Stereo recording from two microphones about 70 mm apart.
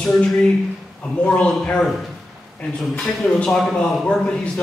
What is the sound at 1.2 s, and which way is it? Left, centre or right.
Speech, centre.